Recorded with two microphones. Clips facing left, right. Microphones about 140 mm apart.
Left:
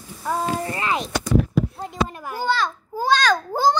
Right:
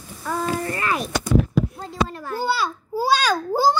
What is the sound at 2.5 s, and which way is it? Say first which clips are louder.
Babbling: left 3 dB; 10° right (ahead or behind).